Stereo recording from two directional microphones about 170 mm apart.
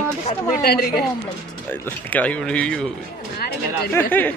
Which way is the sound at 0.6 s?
65° left (ahead or behind).